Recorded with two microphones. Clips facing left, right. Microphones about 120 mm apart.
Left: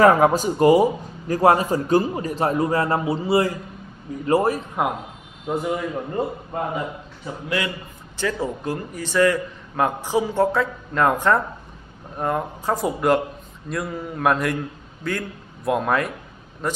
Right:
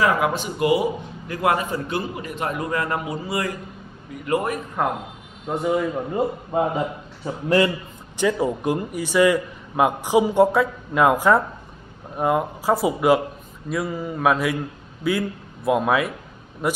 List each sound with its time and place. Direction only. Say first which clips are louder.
0.0 s a man's voice: left 6 dB; 40° left (ahead or behind)
5.5 s a man's voice: right 2 dB; centre (ahead or behind)
7.4 s a man's voice: right 8 dB; 35° right (ahead or behind)
8.2 s a man's voice: right 4 dB; 15° right (ahead or behind)